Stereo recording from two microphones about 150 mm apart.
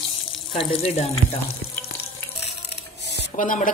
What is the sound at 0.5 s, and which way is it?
Speech, 45° left (ahead or behind).